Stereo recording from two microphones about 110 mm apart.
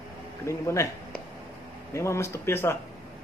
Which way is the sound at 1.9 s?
25° left (ahead or behind).